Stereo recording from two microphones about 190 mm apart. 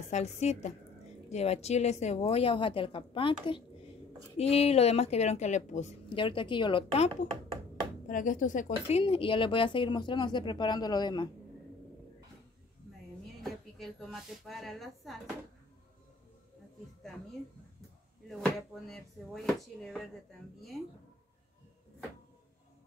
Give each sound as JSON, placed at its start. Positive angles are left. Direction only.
{"t": 0.1, "sound": "a woman's voice", "side_deg": 35}
{"t": 8.1, "sound": "speech", "side_deg": 45}
{"t": 13.4, "sound": "a woman's voice", "side_deg": 0}
{"t": 18.4, "sound": "speech", "side_deg": 0}